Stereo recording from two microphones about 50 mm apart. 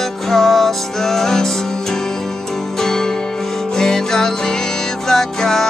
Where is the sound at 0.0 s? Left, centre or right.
Centre.